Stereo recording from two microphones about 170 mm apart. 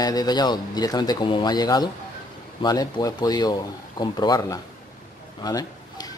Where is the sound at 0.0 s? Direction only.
25° left (ahead or behind).